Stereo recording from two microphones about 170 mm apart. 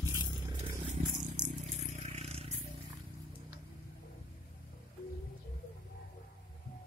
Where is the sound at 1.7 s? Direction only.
40° right (ahead or behind).